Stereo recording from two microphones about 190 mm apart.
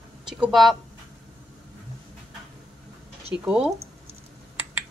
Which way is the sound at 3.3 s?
5° right (ahead or behind).